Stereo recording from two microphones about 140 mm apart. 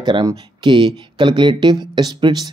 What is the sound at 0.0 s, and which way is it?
Speech, 30° right (ahead or behind).